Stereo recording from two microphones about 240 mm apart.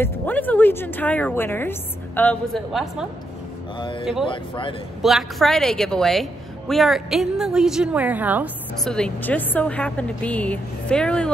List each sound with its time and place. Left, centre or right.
0.0 s speech: centre
4.3 s speech: left
5.0 s a woman's voice: centre